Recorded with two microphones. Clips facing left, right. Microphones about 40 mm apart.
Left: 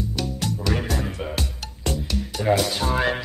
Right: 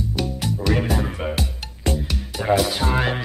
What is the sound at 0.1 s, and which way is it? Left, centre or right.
Frog, centre.